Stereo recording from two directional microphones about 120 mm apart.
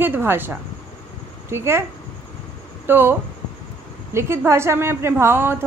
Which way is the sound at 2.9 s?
20° right (ahead or behind).